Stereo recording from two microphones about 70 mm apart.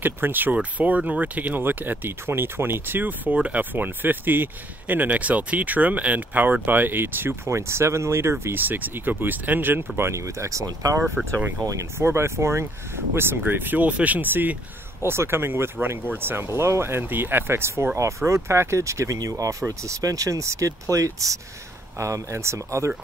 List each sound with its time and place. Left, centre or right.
0.0 s speech: right
8.5 s speech: right
11.2 s speech: centre
12.0 s speech: right